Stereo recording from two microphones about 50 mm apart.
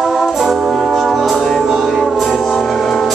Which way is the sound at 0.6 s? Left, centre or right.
Centre.